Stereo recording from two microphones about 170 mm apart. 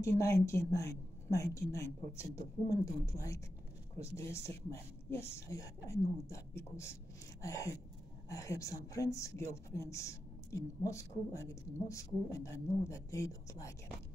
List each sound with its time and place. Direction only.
0.0 s a woman's voice: 15° left (ahead or behind)